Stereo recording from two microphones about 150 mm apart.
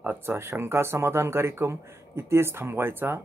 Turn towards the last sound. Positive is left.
turn(degrees=-15)  # may be behind; listen again after turning